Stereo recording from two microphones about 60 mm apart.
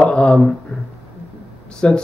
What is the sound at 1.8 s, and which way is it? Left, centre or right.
Mantra, centre.